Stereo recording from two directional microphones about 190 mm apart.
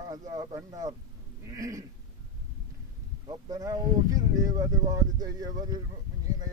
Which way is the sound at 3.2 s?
20° right (ahead or behind).